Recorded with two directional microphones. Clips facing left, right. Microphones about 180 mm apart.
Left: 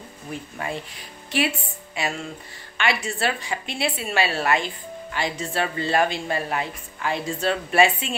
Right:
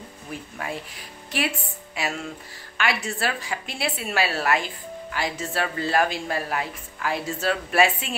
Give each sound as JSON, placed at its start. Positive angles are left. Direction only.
{"t": 0.3, "sound": "a woman's voice", "side_deg": 0}
{"t": 2.0, "sound": "a woman's voice", "side_deg": 0}